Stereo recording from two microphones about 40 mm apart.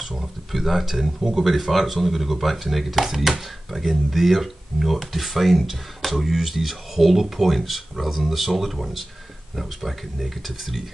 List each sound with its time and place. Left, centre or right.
0.0 s speech: centre